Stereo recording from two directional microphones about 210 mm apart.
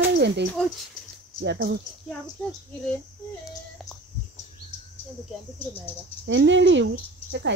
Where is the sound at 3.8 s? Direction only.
Centre (ahead or behind).